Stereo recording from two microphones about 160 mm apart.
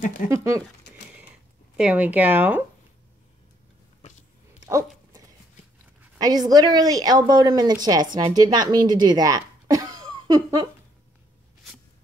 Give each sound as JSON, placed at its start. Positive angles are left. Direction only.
{"t": 0.3, "sound": "a woman's voice", "side_deg": -20}
{"t": 1.8, "sound": "speech", "side_deg": -10}
{"t": 4.6, "sound": "dog", "side_deg": -20}
{"t": 6.1, "sound": "a woman's voice", "side_deg": -25}